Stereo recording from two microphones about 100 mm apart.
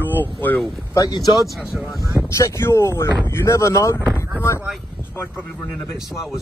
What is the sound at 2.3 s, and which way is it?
Speech, 30° left (ahead or behind).